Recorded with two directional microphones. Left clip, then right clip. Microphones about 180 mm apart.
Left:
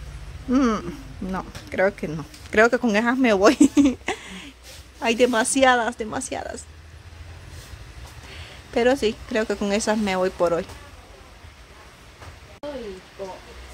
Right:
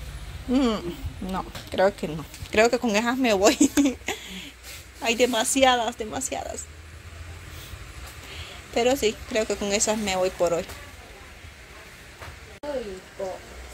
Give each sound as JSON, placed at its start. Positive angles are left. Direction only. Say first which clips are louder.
{"t": 0.5, "sound": "speech", "louder": "left 2 dB", "side_deg": 30}
{"t": 1.3, "sound": "speech", "louder": "left 1 dB", "side_deg": 20}
{"t": 8.7, "sound": "speech", "louder": "left 2 dB", "side_deg": 25}